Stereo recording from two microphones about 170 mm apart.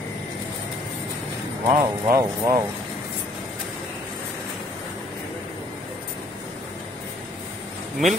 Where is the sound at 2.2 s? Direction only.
20° right (ahead or behind).